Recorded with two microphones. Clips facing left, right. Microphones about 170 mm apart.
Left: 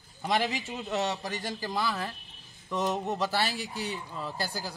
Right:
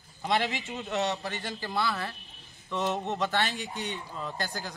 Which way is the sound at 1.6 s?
15° left (ahead or behind).